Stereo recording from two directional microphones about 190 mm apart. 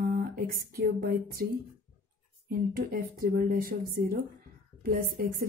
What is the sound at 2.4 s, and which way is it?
A woman's voice, 50° right (ahead or behind).